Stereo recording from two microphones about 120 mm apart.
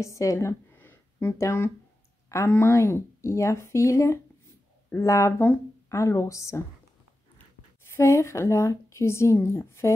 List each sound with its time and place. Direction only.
0.0 s a woman's voice: 25° left (ahead or behind)
7.8 s a woman's voice: 20° left (ahead or behind)